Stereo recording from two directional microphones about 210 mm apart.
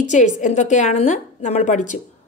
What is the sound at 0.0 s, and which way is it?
A woman's voice, 35° left (ahead or behind).